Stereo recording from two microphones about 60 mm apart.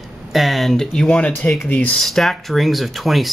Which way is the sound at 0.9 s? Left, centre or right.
Centre.